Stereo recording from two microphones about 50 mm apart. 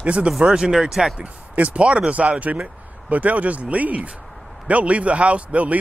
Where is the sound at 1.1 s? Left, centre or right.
Right.